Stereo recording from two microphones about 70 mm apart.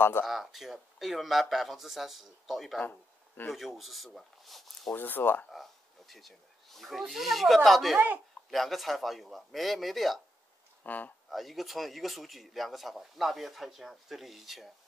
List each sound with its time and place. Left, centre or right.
0.2 s speech: centre
2.8 s speech: left
3.5 s speech: centre
4.9 s speech: left
5.5 s speech: centre
10.8 s speech: left
11.2 s speech: centre